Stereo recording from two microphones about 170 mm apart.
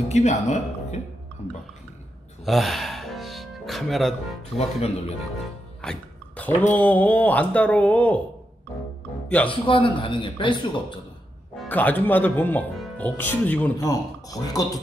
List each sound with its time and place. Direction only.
0.1 s speech: 40° left (ahead or behind)
2.4 s music: centre (ahead or behind)
4.6 s speech: 40° left (ahead or behind)
5.8 s music: 5° left (ahead or behind)
6.7 s speech: 10° left (ahead or behind)
9.5 s speech: 30° left (ahead or behind)
11.7 s speech: 10° left (ahead or behind)
13.7 s speech: 20° left (ahead or behind)